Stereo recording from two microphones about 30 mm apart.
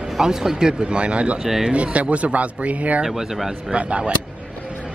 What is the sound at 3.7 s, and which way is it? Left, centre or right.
Speech, right.